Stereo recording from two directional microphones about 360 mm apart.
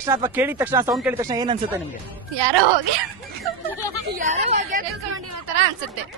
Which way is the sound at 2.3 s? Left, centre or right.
Right.